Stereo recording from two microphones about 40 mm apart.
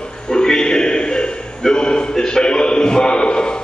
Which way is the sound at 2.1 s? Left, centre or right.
Centre.